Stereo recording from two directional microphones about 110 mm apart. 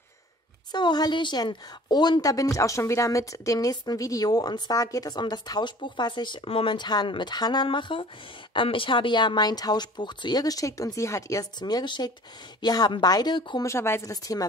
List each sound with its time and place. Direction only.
0.7 s a woman's voice: 40° left (ahead or behind)
13.7 s a woman's voice: 25° left (ahead or behind)